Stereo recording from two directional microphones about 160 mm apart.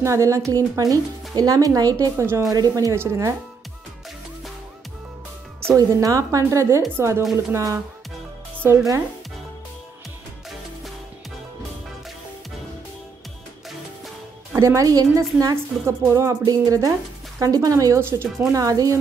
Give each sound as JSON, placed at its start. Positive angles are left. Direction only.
{"t": 0.0, "sound": "a woman's voice", "side_deg": -20}
{"t": 5.7, "sound": "a woman's voice", "side_deg": -20}
{"t": 14.5, "sound": "a woman's voice", "side_deg": -20}